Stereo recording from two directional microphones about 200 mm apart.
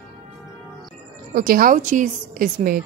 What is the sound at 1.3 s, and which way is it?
A woman's voice, 45° right (ahead or behind).